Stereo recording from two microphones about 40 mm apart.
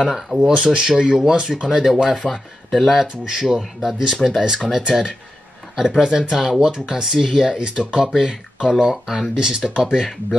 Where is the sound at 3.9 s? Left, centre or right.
Centre.